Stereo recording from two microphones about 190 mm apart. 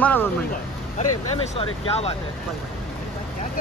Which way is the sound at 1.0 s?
30° left (ahead or behind).